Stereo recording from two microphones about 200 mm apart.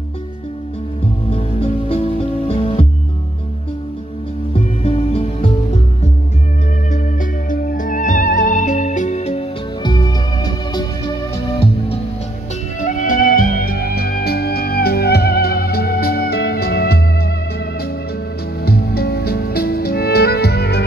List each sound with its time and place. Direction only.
1.3 s music: 30° left (ahead or behind)
4.6 s music: 30° left (ahead or behind)
6.9 s music: 40° left (ahead or behind)
9.8 s music: 20° left (ahead or behind)
12.8 s music: 40° left (ahead or behind)
18.6 s music: 50° left (ahead or behind)